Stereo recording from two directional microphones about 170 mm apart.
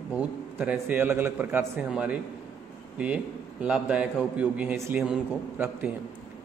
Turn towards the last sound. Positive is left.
turn(degrees=-5)  # may be behind; listen again after turning